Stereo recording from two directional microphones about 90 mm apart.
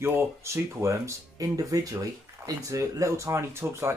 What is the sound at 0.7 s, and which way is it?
Speech, 30° right (ahead or behind).